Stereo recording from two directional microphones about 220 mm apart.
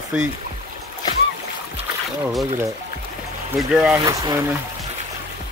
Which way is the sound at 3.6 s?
5° right (ahead or behind).